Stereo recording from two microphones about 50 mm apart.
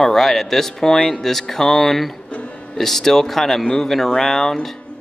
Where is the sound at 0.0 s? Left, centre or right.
Centre.